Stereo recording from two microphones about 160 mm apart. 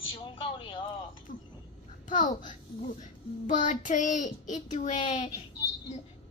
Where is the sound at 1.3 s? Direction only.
55° left (ahead or behind).